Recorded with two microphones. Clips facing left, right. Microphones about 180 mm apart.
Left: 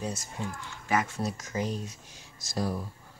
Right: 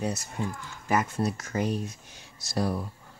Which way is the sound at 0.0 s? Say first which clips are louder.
Right 4 dB; 65° right (ahead or behind).